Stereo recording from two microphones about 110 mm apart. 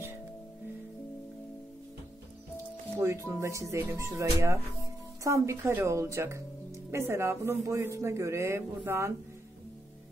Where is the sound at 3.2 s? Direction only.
25° right (ahead or behind).